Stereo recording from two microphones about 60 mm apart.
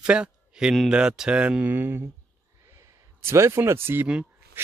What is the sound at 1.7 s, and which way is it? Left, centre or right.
Speech, right.